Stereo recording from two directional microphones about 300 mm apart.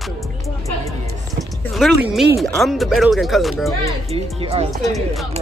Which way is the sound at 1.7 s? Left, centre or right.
Centre.